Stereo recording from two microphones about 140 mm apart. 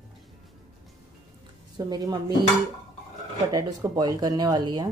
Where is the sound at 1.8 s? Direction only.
30° right (ahead or behind).